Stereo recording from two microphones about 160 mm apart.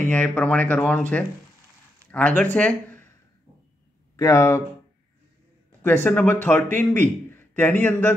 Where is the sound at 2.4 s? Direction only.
10° left (ahead or behind).